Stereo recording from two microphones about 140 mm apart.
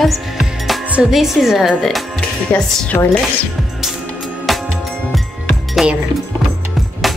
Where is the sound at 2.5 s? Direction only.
10° left (ahead or behind).